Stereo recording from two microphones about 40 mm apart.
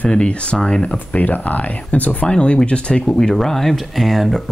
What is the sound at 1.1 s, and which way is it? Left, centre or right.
Speech, left.